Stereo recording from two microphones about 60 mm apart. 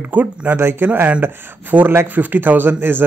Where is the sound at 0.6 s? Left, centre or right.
Right.